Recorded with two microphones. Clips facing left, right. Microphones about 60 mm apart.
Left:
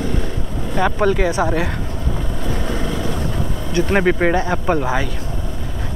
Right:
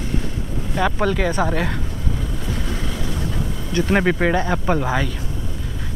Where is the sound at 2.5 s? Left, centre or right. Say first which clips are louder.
Left 6 dB; left.